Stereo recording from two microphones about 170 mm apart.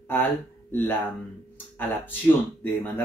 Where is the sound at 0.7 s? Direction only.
10° left (ahead or behind).